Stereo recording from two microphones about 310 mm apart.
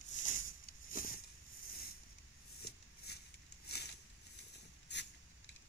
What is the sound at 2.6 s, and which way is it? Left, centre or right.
Shuffling cards, left.